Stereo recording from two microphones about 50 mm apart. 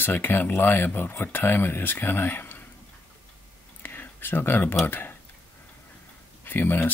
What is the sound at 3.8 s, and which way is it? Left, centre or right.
Whispering, left.